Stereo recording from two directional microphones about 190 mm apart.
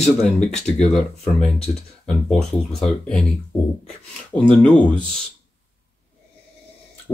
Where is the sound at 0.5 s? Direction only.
5° left (ahead or behind).